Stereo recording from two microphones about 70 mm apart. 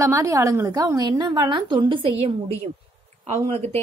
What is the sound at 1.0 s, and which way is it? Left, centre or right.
Speech, right.